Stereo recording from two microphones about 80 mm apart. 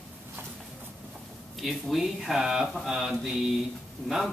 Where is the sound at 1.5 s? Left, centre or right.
Centre.